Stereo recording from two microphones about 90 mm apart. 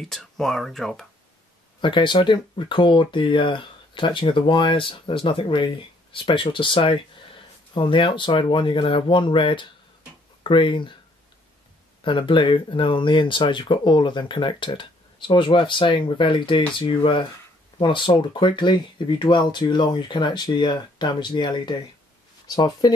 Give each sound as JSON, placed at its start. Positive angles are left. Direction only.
{"t": 0.1, "sound": "speech", "side_deg": 0}
{"t": 1.8, "sound": "speech", "side_deg": 60}
{"t": 12.0, "sound": "speech", "side_deg": 65}